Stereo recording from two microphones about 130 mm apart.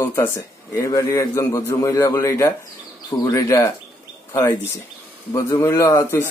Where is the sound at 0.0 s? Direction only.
20° left (ahead or behind).